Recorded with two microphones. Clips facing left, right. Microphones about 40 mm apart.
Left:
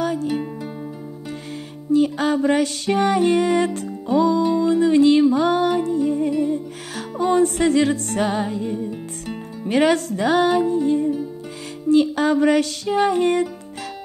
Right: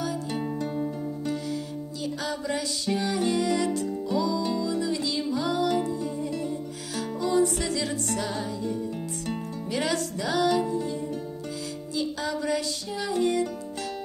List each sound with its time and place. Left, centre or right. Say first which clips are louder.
0.0 s music: left 8 dB; left
1.9 s music: left 16 dB; left